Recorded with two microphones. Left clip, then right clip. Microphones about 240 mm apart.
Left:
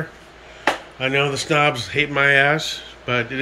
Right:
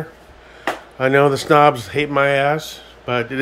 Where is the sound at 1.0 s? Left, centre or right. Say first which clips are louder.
Right 11 dB; right.